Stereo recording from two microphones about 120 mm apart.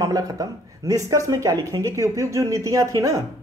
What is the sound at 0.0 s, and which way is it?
Speech, 30° right (ahead or behind).